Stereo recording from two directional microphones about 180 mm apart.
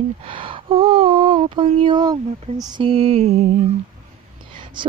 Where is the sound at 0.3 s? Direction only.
30° right (ahead or behind).